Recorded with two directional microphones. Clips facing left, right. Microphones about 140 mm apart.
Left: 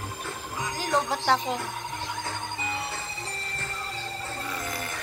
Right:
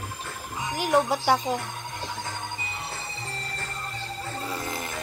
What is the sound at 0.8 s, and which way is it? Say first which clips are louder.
Speech: right 5 dB; 10° right (ahead or behind).